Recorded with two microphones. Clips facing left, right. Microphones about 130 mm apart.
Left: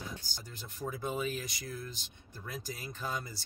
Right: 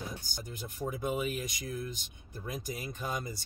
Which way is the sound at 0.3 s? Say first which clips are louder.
Right 5 dB; 15° right (ahead or behind).